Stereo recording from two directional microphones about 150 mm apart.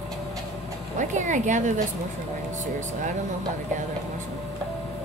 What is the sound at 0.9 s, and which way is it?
Speech, 55° right (ahead or behind).